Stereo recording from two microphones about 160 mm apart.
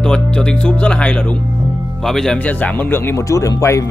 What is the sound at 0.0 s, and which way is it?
Speech, 5° left (ahead or behind).